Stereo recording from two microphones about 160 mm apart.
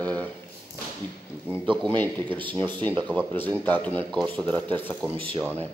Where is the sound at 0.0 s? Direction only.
10° left (ahead or behind).